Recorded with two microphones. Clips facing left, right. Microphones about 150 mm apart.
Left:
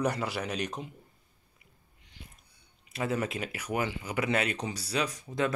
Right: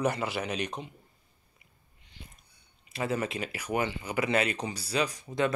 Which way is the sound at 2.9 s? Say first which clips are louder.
Even; centre (ahead or behind).